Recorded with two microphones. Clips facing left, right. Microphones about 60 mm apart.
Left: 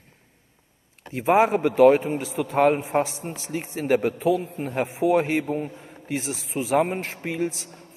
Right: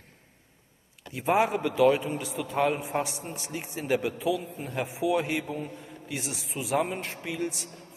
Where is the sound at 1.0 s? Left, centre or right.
Left.